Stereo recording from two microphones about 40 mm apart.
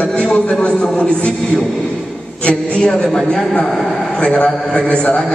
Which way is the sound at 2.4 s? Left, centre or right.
Left.